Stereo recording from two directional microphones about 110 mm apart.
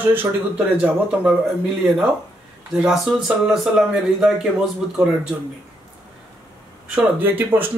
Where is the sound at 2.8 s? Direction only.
5° right (ahead or behind).